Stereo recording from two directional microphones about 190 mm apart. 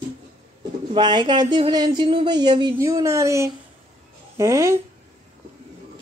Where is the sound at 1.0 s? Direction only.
25° right (ahead or behind).